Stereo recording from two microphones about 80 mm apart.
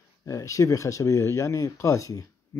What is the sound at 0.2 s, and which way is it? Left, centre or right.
Speech, left.